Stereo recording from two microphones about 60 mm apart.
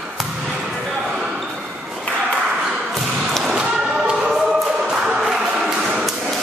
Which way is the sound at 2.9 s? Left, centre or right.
Centre.